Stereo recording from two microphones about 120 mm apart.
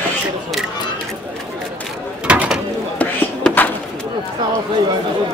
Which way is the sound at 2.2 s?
10° right (ahead or behind).